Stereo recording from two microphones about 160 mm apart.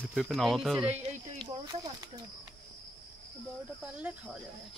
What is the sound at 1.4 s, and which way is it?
Speech, 20° right (ahead or behind).